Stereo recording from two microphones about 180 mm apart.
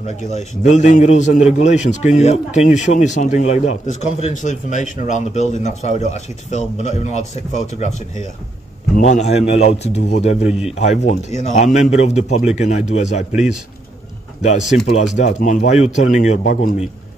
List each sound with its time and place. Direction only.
0.0 s a man's voice: 40° left (ahead or behind)
14.4 s a man's voice: 40° left (ahead or behind)